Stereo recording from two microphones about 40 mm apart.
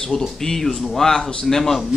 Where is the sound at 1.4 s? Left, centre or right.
Centre.